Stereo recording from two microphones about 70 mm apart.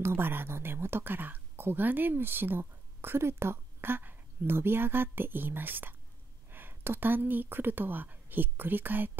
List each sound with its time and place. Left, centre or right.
0.0 s speech: right